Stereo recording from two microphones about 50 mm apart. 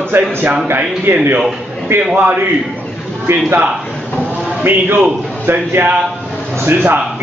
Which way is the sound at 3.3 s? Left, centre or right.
Right.